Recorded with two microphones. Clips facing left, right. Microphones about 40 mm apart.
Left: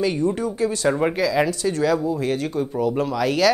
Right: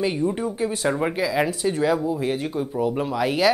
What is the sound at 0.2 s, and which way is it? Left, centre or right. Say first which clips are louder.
Speech: left 2 dB; right.